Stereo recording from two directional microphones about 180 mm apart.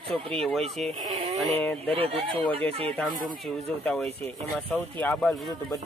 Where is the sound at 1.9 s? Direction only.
30° right (ahead or behind).